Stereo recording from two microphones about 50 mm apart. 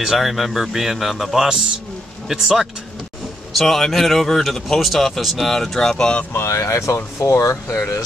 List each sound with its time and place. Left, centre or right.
0.0 s speech: centre
3.5 s speech: centre
6.3 s speech: left